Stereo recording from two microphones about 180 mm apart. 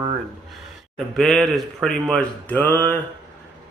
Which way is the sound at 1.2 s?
Centre (ahead or behind).